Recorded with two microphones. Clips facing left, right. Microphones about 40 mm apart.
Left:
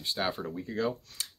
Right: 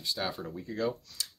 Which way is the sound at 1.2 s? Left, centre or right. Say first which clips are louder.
Right 3 dB; left.